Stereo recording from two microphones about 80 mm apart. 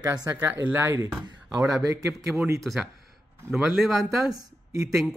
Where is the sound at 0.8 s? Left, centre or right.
Right.